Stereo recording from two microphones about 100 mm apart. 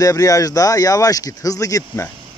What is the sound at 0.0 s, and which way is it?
Speech, 35° left (ahead or behind).